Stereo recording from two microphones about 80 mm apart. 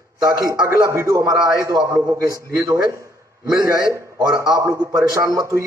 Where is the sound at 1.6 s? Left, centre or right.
Right.